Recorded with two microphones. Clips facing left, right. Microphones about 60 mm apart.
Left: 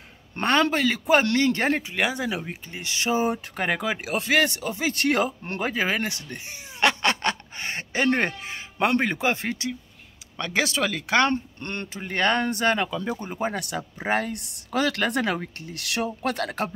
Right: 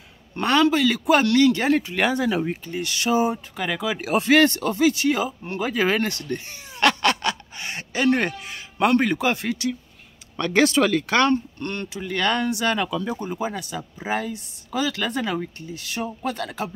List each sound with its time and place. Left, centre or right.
0.4 s speech: left
0.8 s speech: left
1.8 s speech: centre
2.6 s speech: left
3.3 s speech: left
4.1 s speech: centre
4.5 s speech: centre
4.9 s speech: left
5.9 s speech: centre
10.3 s speech: centre
11.1 s speech: left
13.4 s speech: left
15.6 s speech: left
16.3 s speech: left